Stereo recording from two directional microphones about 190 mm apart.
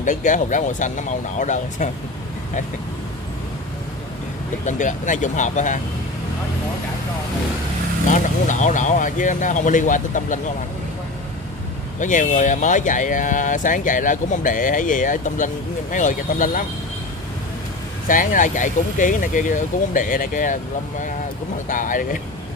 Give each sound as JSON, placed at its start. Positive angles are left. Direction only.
{"t": 0.0, "sound": "speech", "side_deg": 40}
{"t": 4.6, "sound": "speech", "side_deg": 40}
{"t": 8.1, "sound": "speech", "side_deg": 40}
{"t": 12.0, "sound": "speech", "side_deg": 40}
{"t": 18.0, "sound": "speech", "side_deg": 45}
{"t": 21.6, "sound": "speech", "side_deg": 45}